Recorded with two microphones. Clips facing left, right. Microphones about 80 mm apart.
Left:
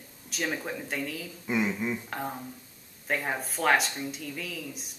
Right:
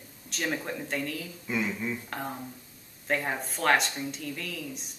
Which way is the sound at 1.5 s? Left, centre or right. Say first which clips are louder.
Left 3 dB; centre.